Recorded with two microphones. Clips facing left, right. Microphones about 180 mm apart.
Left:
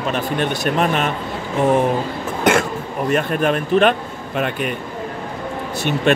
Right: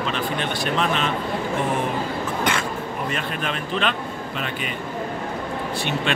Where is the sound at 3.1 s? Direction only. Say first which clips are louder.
Left 14 dB; 50° left (ahead or behind).